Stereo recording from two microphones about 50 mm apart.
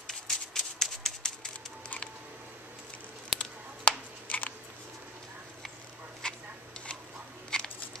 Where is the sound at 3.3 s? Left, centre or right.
Left.